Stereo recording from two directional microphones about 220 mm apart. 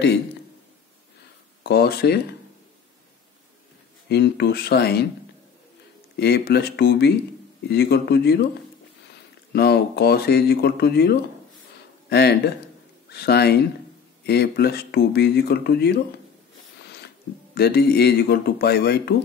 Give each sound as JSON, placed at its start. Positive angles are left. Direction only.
{"t": 1.6, "sound": "speech", "side_deg": 45}
{"t": 4.1, "sound": "speech", "side_deg": 50}
{"t": 6.1, "sound": "speech", "side_deg": 45}
{"t": 9.5, "sound": "speech", "side_deg": 45}
{"t": 16.8, "sound": "a sound", "side_deg": 50}
{"t": 17.6, "sound": "speech", "side_deg": 45}